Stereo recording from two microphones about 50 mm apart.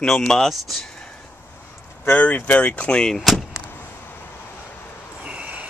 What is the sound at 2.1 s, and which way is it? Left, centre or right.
Speech, left.